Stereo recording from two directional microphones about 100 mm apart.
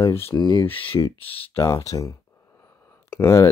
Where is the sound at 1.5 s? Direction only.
30° left (ahead or behind).